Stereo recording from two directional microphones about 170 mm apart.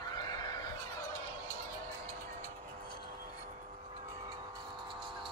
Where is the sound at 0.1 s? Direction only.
25° left (ahead or behind).